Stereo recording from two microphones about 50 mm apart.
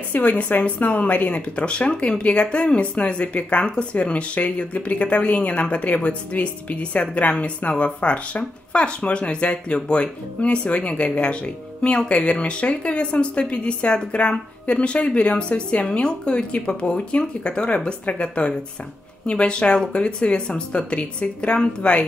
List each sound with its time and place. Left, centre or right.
0.1 s speech: left